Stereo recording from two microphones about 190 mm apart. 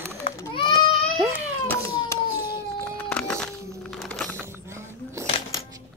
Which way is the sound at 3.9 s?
Centre (ahead or behind).